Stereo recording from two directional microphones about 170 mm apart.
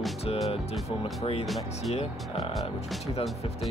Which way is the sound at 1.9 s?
35° left (ahead or behind).